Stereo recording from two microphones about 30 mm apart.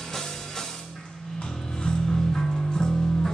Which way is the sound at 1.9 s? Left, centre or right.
Left.